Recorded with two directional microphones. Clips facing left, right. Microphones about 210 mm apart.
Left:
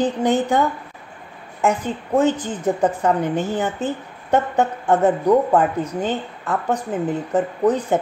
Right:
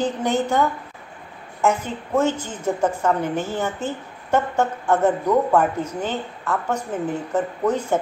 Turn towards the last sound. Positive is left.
turn(degrees=15)  # may be behind; listen again after turning